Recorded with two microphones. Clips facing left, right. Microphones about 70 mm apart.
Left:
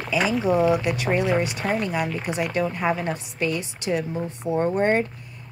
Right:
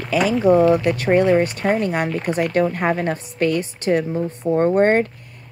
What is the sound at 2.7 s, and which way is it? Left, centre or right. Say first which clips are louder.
A woman's voice: right 4 dB; right.